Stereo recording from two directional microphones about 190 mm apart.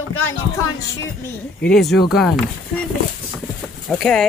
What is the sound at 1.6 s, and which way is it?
Speech, centre (ahead or behind).